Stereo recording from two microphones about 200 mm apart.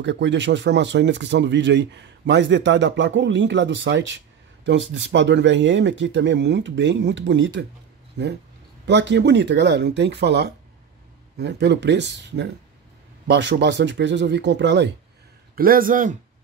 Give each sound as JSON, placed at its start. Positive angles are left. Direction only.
{"t": 0.0, "sound": "speech", "side_deg": -60}
{"t": 15.5, "sound": "speech", "side_deg": -45}